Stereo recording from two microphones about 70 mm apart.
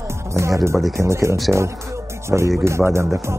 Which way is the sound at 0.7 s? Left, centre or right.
Centre.